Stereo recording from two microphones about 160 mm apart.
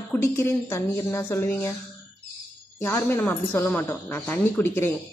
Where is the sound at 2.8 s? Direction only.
15° left (ahead or behind).